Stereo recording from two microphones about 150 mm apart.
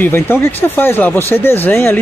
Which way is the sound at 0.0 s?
15° left (ahead or behind).